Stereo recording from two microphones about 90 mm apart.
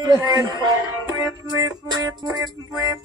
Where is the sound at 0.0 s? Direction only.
50° right (ahead or behind).